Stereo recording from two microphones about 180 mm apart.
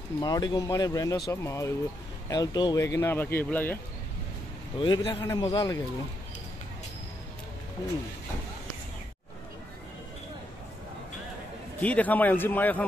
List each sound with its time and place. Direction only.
0.2 s speech: 25° left (ahead or behind)
4.7 s speech: 25° left (ahead or behind)
11.8 s speech: 10° left (ahead or behind)